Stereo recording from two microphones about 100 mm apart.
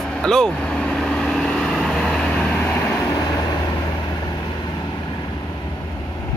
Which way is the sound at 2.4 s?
20° left (ahead or behind).